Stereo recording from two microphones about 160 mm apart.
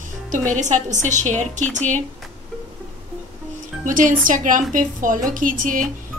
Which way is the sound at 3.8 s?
55° right (ahead or behind).